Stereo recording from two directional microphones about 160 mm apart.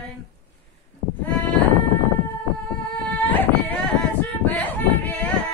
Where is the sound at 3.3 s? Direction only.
10° left (ahead or behind).